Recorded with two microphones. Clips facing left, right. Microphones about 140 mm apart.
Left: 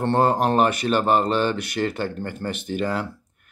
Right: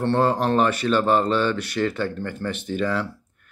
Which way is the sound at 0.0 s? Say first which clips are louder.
Left 1 dB; 50° left (ahead or behind).